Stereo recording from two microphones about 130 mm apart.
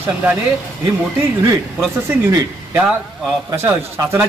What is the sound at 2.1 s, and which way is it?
A man's voice, 20° right (ahead or behind).